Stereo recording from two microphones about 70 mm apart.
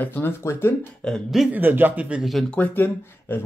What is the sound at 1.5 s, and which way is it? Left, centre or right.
Speech, right.